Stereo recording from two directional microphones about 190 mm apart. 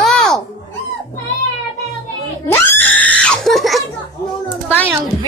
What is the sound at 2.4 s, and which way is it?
Screaming, 10° left (ahead or behind).